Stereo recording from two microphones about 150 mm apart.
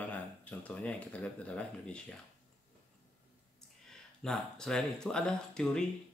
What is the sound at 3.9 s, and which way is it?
Speech, 5° left (ahead or behind).